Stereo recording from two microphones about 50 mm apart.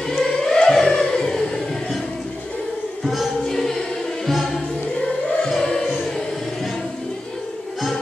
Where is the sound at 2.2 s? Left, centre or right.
Left.